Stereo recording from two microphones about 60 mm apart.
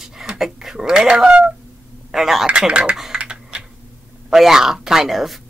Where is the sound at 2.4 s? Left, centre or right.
Centre.